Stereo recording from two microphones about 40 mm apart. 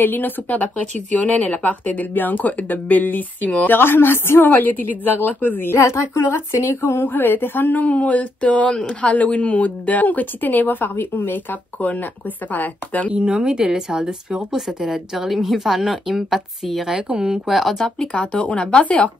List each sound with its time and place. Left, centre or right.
0.0 s speech: left
0.6 s speech: left
3.6 s speech: left
4.5 s speech: left
6.3 s speech: left
11.8 s speech: left
13.1 s speech: right
16.6 s speech: centre
16.9 s speech: right
17.5 s speech: centre
17.7 s speech: centre
18.0 s speech: left